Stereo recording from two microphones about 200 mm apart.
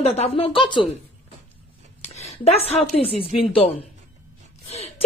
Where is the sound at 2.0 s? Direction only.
30° left (ahead or behind).